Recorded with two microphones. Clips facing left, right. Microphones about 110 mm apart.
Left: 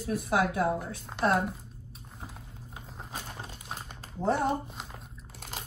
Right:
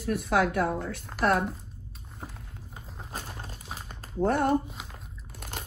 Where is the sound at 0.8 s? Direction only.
Centre (ahead or behind).